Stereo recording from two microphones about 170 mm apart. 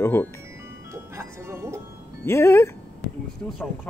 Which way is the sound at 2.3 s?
15° left (ahead or behind).